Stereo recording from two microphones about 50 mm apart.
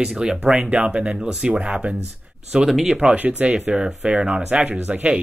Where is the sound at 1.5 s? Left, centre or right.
Right.